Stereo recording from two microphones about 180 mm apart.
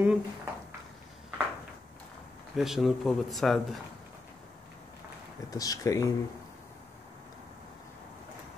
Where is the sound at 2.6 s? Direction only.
Centre (ahead or behind).